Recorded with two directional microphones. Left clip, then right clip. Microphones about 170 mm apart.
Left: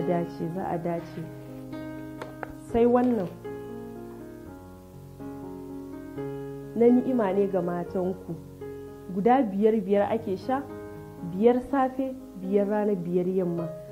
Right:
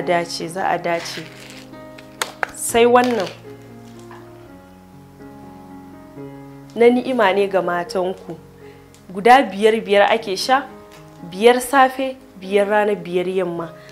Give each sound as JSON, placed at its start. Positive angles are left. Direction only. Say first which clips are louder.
{"t": 0.1, "sound": "a woman's voice", "louder": "right 9 dB", "side_deg": -15}
{"t": 2.1, "sound": "music", "louder": "right 13 dB", "side_deg": -10}
{"t": 6.8, "sound": "a woman's voice", "louder": "right 8 dB", "side_deg": -15}
{"t": 9.1, "sound": "a woman's voice", "louder": "right 11 dB", "side_deg": -15}